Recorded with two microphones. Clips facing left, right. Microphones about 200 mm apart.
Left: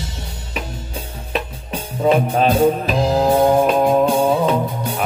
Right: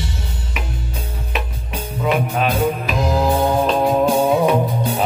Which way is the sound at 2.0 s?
35° left (ahead or behind).